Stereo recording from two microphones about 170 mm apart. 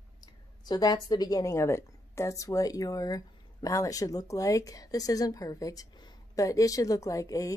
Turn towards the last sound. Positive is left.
turn(degrees=20)  # may be behind; listen again after turning